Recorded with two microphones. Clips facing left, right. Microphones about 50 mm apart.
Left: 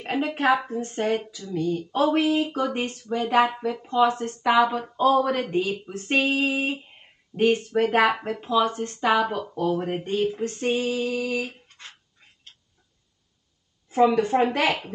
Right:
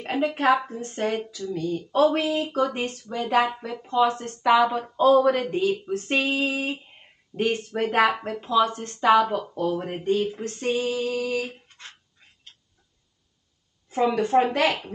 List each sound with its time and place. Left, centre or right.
0.0 s a sound: centre
0.3 s speech: centre
10.6 s female singing: left
10.9 s speech: centre
13.8 s a sound: centre
14.1 s speech: centre
14.4 s speech: centre